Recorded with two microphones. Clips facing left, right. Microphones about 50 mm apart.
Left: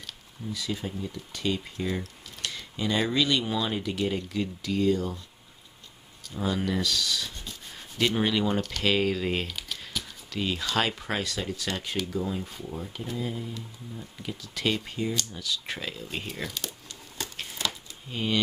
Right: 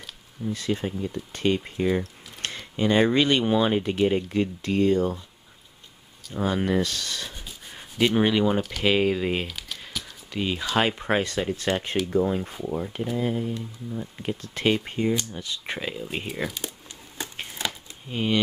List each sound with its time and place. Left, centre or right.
0.5 s speech: right
1.6 s speech: right
6.3 s speech: right
7.2 s speech: centre
9.6 s crumpling: centre
10.3 s speech: centre
17.2 s a sound: right